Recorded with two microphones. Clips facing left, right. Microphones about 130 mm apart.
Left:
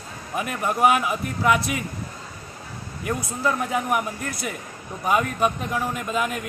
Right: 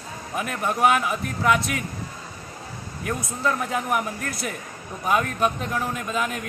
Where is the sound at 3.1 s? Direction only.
10° left (ahead or behind).